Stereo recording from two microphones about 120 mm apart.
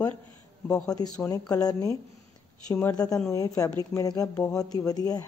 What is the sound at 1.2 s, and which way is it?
Speech, 30° left (ahead or behind).